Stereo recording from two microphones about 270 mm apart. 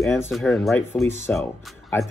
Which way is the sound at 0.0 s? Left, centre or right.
Centre.